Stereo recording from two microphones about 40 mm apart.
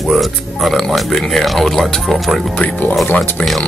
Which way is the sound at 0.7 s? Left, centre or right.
Centre.